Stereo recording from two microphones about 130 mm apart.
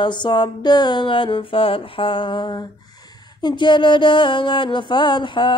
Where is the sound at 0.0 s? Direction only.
35° left (ahead or behind).